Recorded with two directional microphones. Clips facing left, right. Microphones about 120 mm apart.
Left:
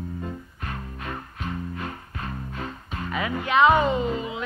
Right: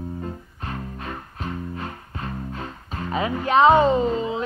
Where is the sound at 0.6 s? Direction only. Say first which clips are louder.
Right 3 dB; 30° right (ahead or behind).